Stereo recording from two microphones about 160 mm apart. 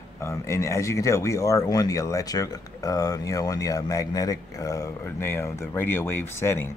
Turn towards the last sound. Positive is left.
turn(degrees=15)  # may be behind; listen again after turning